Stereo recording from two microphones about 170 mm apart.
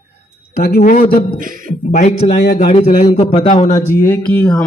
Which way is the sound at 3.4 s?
30° left (ahead or behind).